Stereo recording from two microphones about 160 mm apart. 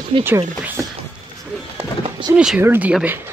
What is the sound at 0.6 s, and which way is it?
Speech, 10° right (ahead or behind).